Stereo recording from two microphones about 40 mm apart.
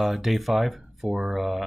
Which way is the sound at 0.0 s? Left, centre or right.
Centre.